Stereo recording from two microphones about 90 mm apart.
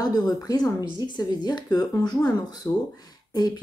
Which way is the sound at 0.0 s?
50° left (ahead or behind).